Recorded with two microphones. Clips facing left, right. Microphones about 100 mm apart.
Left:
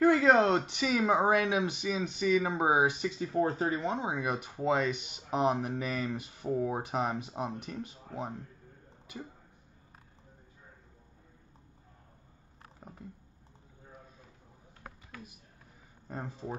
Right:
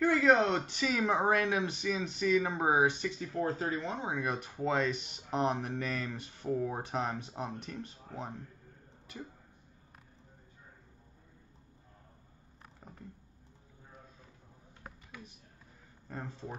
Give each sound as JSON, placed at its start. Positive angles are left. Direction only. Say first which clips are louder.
{"t": 0.0, "sound": "speech", "louder": "left 3 dB", "side_deg": 30}
{"t": 0.7, "sound": "speech", "louder": "left 3 dB", "side_deg": 10}
{"t": 3.2, "sound": "speech", "louder": "left 4 dB", "side_deg": 25}
{"t": 4.0, "sound": "speech", "louder": "left 2 dB", "side_deg": 10}
{"t": 16.1, "sound": "speech", "louder": "left 3 dB", "side_deg": 10}